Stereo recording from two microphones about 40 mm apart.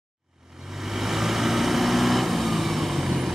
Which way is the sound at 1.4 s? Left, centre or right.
Centre.